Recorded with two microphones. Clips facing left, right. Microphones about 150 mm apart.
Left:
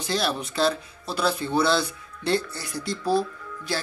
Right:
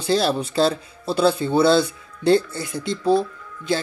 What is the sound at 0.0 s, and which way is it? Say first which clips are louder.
Speech: right 6 dB; 30° right (ahead or behind).